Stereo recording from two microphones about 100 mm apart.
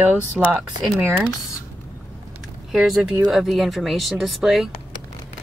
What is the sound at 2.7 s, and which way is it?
Speech, 5° right (ahead or behind).